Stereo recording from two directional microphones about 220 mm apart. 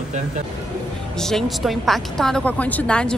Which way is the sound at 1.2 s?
Centre (ahead or behind).